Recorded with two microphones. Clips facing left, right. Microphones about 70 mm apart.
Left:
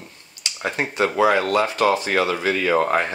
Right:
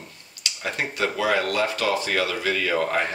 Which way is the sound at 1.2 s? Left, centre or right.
Left.